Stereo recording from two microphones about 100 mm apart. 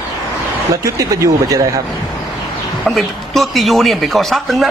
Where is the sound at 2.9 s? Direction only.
Centre (ahead or behind).